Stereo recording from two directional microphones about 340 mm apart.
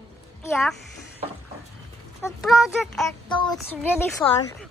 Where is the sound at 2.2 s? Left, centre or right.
Centre.